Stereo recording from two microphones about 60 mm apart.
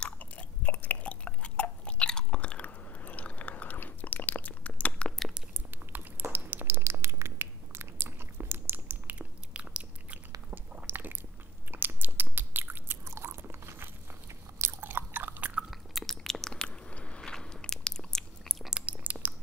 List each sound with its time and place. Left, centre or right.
0.0 s chewing: left
5.7 s chewing: right
6.3 s a sound: right
8.5 s chewing: right; by 10.2 s centre
10.5 s chewing: right
11.7 s biting: right
14.8 s chewing: right
15.7 s biting: centre
18.6 s chewing: centre
19.1 s a sound: right